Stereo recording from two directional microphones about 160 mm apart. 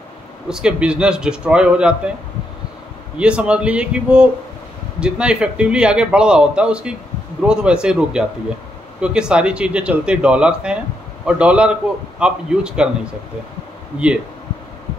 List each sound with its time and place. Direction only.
0.5 s speech: 5° right (ahead or behind)
3.2 s speech: 5° right (ahead or behind)